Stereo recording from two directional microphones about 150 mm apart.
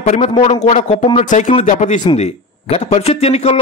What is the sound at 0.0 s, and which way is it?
A man's voice, 40° left (ahead or behind).